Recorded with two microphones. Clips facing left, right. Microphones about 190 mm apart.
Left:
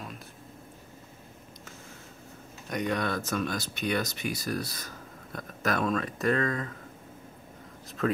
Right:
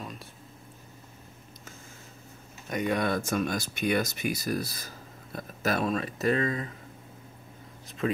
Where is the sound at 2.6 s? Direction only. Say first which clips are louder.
Right 2 dB; 5° right (ahead or behind).